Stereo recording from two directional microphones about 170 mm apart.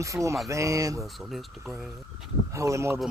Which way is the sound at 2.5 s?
15° right (ahead or behind).